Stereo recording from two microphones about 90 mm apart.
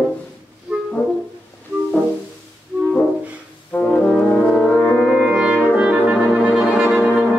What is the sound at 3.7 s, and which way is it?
Brass instrument, 20° left (ahead or behind).